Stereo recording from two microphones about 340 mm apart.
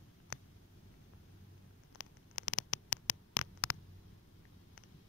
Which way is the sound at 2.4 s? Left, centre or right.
Left.